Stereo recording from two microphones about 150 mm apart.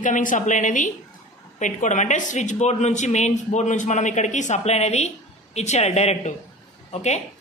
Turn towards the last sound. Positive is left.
turn(degrees=50)  # may be behind; listen again after turning